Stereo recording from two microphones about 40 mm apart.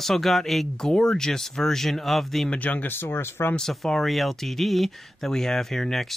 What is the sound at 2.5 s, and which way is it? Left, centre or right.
Speech, left.